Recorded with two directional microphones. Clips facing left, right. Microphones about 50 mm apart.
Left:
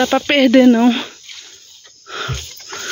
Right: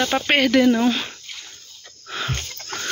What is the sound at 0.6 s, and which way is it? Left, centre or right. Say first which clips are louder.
Speech: left 7 dB; left.